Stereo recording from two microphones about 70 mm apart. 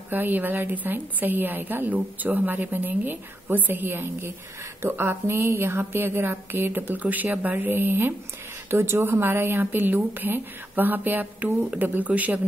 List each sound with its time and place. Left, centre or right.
0.1 s a woman's voice: right